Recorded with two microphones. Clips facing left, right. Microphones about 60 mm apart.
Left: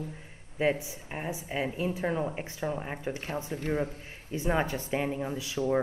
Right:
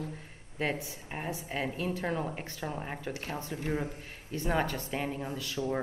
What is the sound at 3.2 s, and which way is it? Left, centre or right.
Speech, left.